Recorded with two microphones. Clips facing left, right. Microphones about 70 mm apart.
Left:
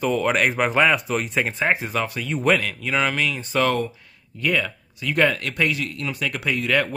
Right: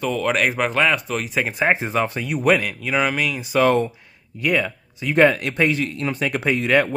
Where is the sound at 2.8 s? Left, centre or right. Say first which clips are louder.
Right 1 dB; centre.